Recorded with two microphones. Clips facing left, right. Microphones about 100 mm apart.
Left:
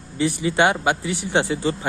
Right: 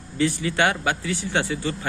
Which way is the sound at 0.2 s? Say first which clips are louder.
Left 3 dB; 20° left (ahead or behind).